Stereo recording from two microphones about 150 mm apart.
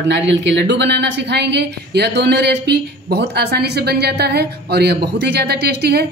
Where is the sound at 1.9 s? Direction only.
90° right.